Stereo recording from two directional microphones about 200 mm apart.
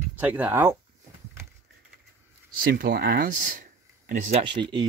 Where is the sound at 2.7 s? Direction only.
50° right (ahead or behind).